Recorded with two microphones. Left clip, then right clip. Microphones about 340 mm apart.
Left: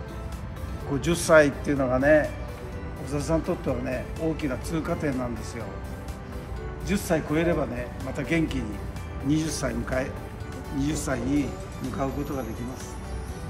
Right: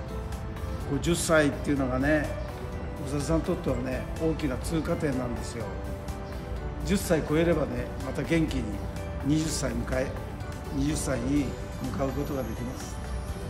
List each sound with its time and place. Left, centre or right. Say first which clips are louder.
1.0 s speech: left 5 dB; centre
6.9 s speech: even; centre
10.8 s speech: left 2 dB; centre
11.3 s speech: left 2 dB; centre